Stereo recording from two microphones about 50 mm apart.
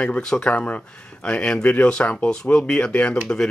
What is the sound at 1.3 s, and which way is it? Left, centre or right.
Speech, centre.